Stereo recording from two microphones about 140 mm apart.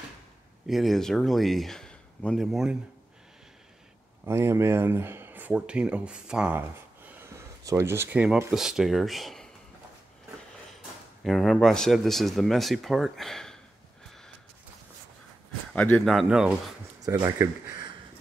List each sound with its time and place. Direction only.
0.7 s speech: centre (ahead or behind)
4.3 s speech: 20° right (ahead or behind)
7.2 s speech: 20° right (ahead or behind); by 9.5 s centre (ahead or behind)
11.2 s speech: centre (ahead or behind)
15.7 s speech: 10° left (ahead or behind)
16.1 s speech: 5° right (ahead or behind)
17.0 s speech: 25° right (ahead or behind)